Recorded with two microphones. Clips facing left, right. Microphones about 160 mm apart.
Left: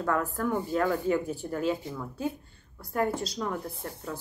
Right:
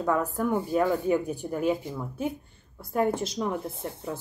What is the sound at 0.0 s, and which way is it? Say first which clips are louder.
Speech: right 2 dB; 15° right (ahead or behind).